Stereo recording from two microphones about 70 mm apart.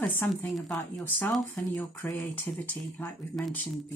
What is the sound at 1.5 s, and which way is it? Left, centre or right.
Speech, left.